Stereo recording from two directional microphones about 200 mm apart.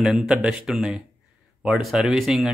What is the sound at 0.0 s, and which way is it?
Speech, 5° right (ahead or behind).